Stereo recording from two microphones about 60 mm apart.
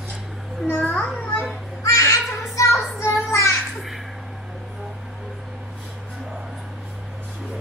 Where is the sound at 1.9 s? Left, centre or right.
Left.